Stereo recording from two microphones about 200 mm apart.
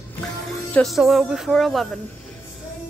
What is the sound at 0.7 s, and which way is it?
Speech, centre (ahead or behind).